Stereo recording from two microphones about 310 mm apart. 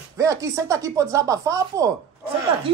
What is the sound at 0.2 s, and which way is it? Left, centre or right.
Speech, centre.